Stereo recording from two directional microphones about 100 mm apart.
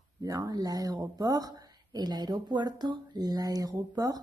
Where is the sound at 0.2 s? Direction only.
35° right (ahead or behind).